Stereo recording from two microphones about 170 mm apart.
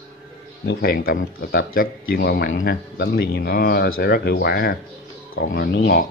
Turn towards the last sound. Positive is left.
turn(degrees=60)  # may be behind; listen again after turning